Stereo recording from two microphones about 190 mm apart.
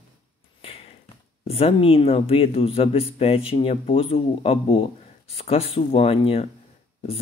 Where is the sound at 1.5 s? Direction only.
30° left (ahead or behind).